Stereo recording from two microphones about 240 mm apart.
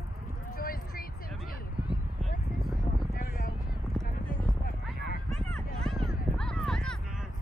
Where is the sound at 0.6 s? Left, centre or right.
Left.